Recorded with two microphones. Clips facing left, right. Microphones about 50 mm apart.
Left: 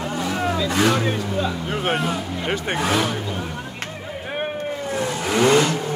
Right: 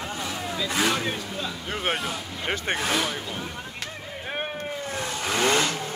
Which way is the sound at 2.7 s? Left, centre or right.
Centre.